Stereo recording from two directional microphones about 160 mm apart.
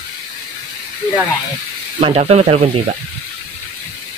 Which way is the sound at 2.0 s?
35° right (ahead or behind).